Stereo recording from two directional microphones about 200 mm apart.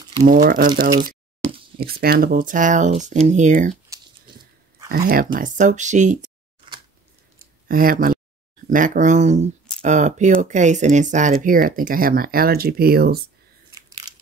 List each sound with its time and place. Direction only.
0.3 s speech: 45° right (ahead or behind)
4.8 s speech: 45° right (ahead or behind)
7.6 s speech: 45° right (ahead or behind)
13.7 s a sound: 20° right (ahead or behind)